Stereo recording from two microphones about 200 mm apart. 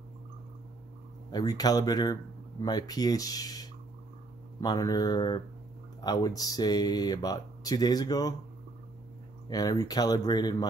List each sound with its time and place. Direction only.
1.3 s speech: 20° left (ahead or behind)
9.5 s speech: 20° left (ahead or behind)